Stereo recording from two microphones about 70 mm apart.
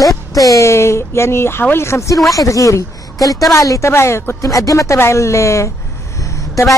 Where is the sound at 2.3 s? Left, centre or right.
Left.